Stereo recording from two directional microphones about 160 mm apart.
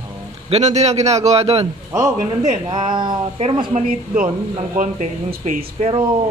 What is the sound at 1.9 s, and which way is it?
Speech, 20° right (ahead or behind).